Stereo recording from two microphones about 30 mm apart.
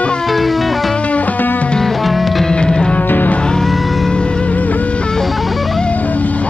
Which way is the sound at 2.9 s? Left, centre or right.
Left.